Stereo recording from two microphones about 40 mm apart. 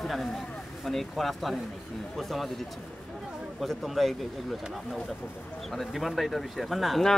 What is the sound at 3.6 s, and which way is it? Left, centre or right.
Speech, centre.